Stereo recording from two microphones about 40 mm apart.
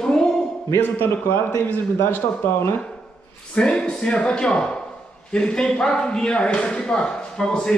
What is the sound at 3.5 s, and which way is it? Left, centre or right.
Speech, left.